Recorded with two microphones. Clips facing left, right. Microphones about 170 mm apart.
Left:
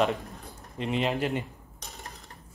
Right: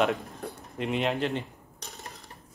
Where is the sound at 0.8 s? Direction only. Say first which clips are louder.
Even; centre (ahead or behind).